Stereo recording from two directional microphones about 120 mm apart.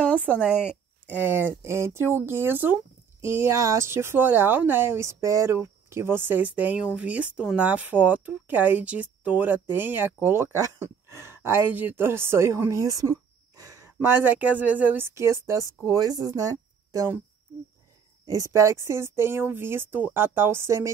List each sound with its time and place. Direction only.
0.4 s speech: 5° right (ahead or behind)
0.7 s a sound: 15° left (ahead or behind)
1.2 s speech: 20° right (ahead or behind)
13.6 s a sound: 30° right (ahead or behind)
13.9 s speech: 15° right (ahead or behind)
18.2 s speech: 30° right (ahead or behind)